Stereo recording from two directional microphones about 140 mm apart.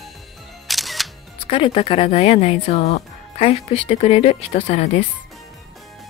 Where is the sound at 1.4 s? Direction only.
40° left (ahead or behind).